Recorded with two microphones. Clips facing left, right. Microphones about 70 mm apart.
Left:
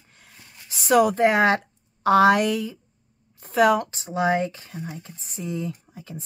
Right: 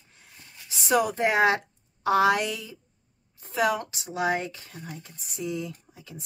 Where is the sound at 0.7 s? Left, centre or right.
Left.